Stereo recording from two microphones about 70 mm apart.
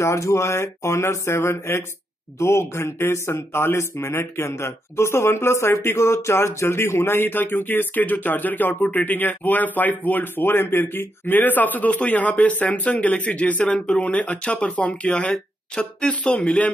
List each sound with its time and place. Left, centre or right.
0.0 s speech: left; by 13.7 s centre
13.7 s speech: centre
14.0 s speech: centre